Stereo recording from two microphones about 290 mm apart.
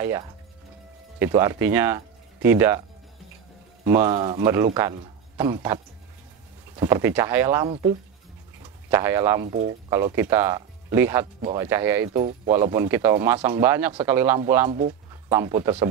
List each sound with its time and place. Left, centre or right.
0.0 s speech: centre
3.8 s speech: centre
6.8 s speech: centre
7.6 s speech: centre
8.9 s speech: centre